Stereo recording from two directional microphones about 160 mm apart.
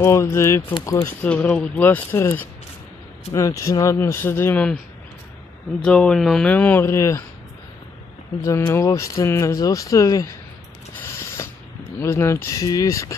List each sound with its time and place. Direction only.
0.0 s speech: 15° left (ahead or behind)
3.3 s speech: 20° left (ahead or behind)
5.9 s speech: 5° left (ahead or behind)
8.4 s speech: 15° left (ahead or behind)
11.0 s a sound: 15° left (ahead or behind)
12.0 s speech: 15° left (ahead or behind)